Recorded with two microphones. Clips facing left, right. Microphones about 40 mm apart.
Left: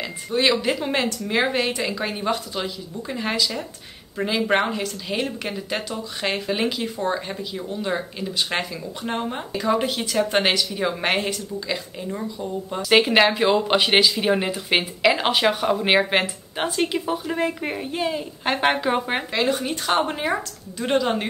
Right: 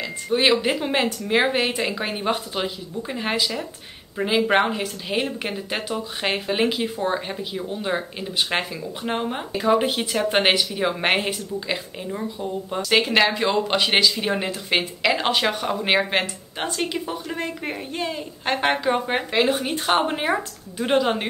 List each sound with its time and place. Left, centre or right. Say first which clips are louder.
0.3 s a woman's voice: right 1 dB; centre
7.3 s speech: even; centre
12.9 s speech: left 2 dB; centre
19.3 s speech: right 2 dB; centre